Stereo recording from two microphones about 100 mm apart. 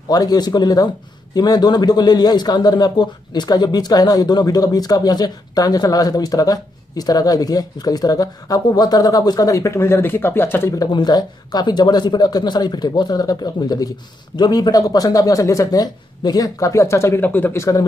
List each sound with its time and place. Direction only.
0.1 s a man's voice: 40° left (ahead or behind); by 10.7 s 25° left (ahead or behind)
10.9 s a man's voice: 45° left (ahead or behind); by 17.8 s 30° left (ahead or behind)